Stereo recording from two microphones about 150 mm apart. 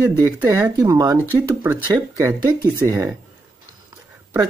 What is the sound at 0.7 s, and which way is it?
Speech, 25° right (ahead or behind).